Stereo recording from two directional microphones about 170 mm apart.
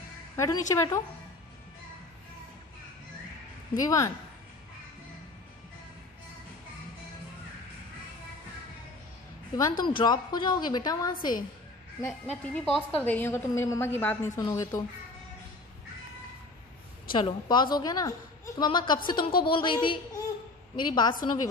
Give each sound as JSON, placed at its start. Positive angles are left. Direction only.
{"t": 0.4, "sound": "a woman's voice", "side_deg": 20}
{"t": 3.7, "sound": "a woman's voice", "side_deg": 20}
{"t": 9.6, "sound": "a woman's voice", "side_deg": 25}
{"t": 12.3, "sound": "a woman's voice", "side_deg": 0}
{"t": 17.1, "sound": "a woman's voice", "side_deg": 25}